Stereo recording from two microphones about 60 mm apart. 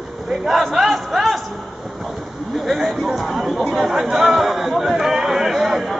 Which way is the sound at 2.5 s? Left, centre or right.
Centre.